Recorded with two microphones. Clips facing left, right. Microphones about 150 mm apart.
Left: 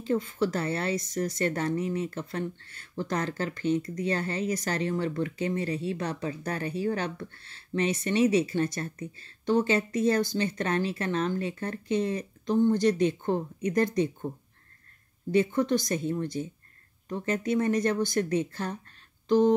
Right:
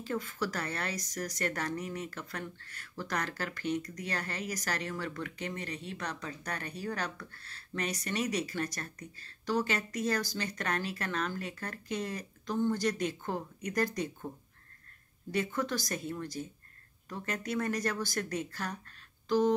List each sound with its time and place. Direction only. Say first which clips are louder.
0.1 s speech: left 8 dB; 25° left (ahead or behind)
15.3 s speech: left 9 dB; 20° left (ahead or behind)